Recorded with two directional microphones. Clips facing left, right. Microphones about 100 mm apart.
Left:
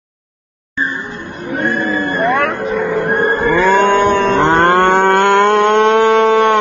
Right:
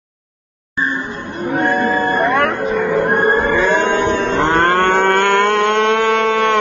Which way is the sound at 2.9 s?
25° right (ahead or behind).